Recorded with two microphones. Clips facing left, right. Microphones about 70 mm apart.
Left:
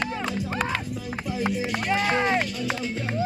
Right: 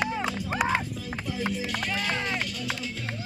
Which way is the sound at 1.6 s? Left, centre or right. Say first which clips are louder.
Left 5 dB; left.